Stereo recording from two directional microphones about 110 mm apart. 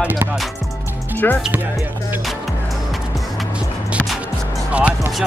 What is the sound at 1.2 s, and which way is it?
Speech, 15° left (ahead or behind).